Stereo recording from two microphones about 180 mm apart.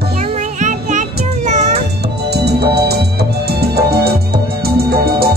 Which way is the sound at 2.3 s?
65° right (ahead or behind).